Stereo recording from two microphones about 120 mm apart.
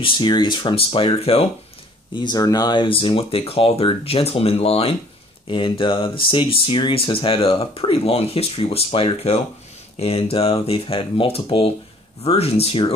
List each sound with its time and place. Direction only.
0.0 s speech: 40° left (ahead or behind)
2.1 s speech: 35° left (ahead or behind); by 4.9 s 55° left (ahead or behind)
5.5 s speech: 45° left (ahead or behind)